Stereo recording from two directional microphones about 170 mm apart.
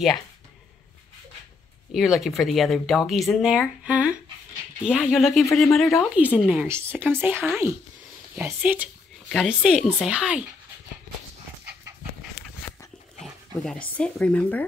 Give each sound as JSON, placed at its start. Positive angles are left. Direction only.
{"t": 1.9, "sound": "speech", "side_deg": 0}
{"t": 12.4, "sound": "a sound", "side_deg": 60}
{"t": 13.2, "sound": "speech", "side_deg": 0}